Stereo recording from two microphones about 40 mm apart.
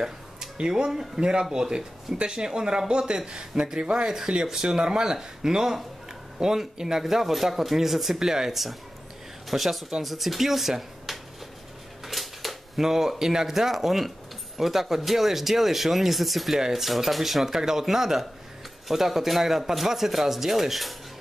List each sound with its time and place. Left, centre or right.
0.6 s speech: right; by 11.1 s centre
12.0 s a sound: centre
13.3 s speech: centre